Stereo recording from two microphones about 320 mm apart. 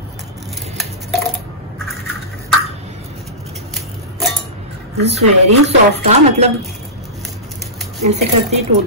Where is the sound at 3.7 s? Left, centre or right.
Centre.